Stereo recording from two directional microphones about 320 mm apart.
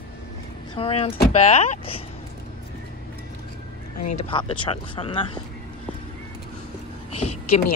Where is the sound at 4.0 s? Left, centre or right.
Left.